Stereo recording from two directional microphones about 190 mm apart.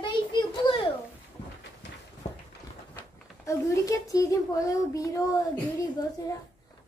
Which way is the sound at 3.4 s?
15° left (ahead or behind).